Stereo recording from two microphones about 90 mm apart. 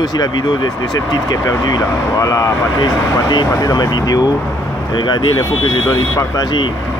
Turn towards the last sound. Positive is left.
turn(degrees=55)  # may be behind; listen again after turning